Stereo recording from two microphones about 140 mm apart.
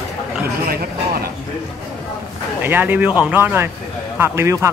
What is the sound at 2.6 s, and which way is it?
Speech, 15° right (ahead or behind).